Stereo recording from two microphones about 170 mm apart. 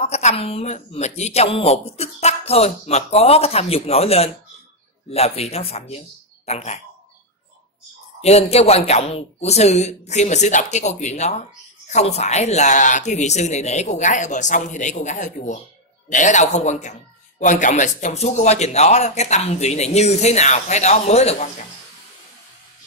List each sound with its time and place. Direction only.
0.0 s a woman's voice: 40° left (ahead or behind)
8.2 s a woman's voice: 40° left (ahead or behind)